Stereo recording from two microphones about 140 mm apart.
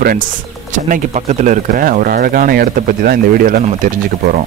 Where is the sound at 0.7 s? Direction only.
60° right (ahead or behind); by 3.6 s 90° right.